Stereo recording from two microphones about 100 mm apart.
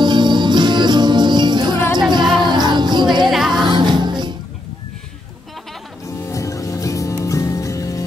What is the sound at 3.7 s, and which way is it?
Music, 50° right (ahead or behind).